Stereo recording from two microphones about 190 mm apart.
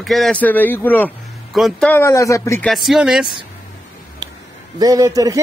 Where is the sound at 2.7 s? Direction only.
Centre (ahead or behind).